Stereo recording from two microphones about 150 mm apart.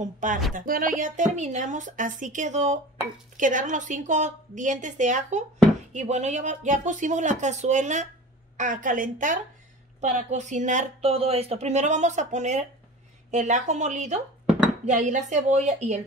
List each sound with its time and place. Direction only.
0.0 s a woman's voice: 60° right (ahead or behind)
9.9 s a woman's voice: 50° right (ahead or behind)